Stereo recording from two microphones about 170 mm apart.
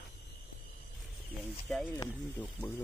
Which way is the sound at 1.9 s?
15° left (ahead or behind).